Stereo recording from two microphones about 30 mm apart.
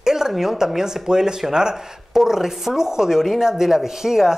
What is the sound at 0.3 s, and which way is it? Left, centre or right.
A man's voice, centre.